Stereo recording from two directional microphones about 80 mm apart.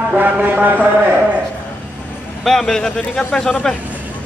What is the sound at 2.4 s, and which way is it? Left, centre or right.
A man's voice, centre.